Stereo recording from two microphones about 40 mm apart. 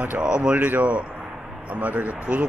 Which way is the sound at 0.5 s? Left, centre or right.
Right.